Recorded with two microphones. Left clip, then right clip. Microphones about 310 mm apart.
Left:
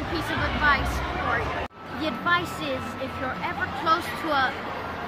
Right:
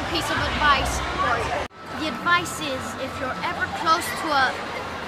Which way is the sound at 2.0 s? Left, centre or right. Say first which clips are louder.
Right 3 dB; centre.